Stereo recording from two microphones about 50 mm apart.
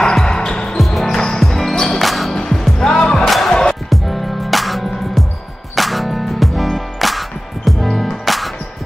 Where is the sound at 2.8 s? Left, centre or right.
Centre.